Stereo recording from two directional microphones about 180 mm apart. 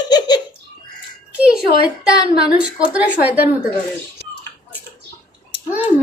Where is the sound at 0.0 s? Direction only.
25° left (ahead or behind).